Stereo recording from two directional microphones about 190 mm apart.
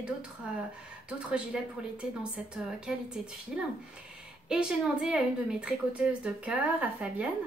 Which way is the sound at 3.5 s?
5° right (ahead or behind).